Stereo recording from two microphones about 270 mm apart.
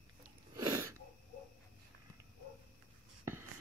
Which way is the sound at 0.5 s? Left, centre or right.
Centre.